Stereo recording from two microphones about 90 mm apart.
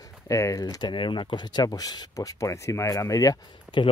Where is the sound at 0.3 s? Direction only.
40° left (ahead or behind).